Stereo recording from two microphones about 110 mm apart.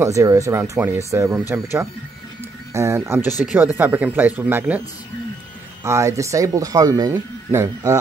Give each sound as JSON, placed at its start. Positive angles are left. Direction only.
{"t": 0.0, "sound": "speech", "side_deg": -30}
{"t": 3.5, "sound": "speech", "side_deg": -15}
{"t": 5.9, "sound": "speech", "side_deg": -30}